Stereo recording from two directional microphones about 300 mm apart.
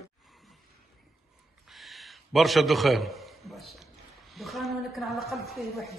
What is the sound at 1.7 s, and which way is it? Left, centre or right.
A man's voice, centre.